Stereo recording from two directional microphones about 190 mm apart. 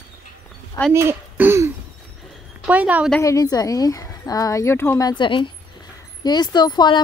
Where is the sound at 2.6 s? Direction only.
10° right (ahead or behind).